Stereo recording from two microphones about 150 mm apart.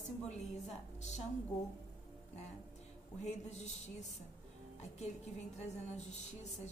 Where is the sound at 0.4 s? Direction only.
50° left (ahead or behind).